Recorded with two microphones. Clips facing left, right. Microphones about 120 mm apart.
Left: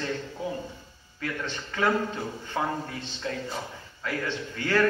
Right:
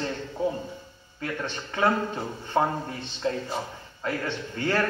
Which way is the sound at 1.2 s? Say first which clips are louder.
Right 1 dB; 25° right (ahead or behind).